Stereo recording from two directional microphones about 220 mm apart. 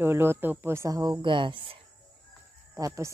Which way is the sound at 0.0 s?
10° right (ahead or behind).